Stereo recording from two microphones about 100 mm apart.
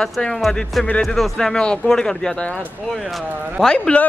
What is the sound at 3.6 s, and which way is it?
Speech, 10° left (ahead or behind).